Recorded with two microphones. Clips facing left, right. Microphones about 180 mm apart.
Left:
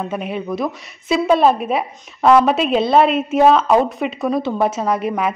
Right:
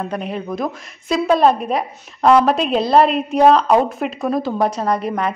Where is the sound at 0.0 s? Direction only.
5° left (ahead or behind).